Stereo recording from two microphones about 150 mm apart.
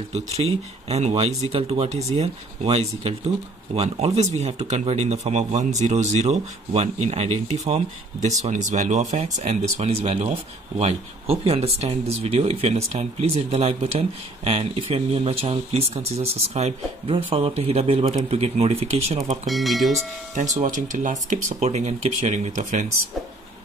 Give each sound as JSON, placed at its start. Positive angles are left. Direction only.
{"t": 0.1, "sound": "speech", "side_deg": -45}
{"t": 19.4, "sound": "speech", "side_deg": 0}
{"t": 20.5, "sound": "speech", "side_deg": -60}